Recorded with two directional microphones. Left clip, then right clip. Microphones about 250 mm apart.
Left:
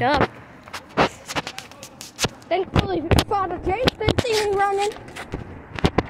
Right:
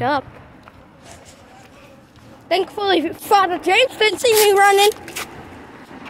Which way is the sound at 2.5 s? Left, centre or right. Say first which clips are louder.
Right 5 dB; right.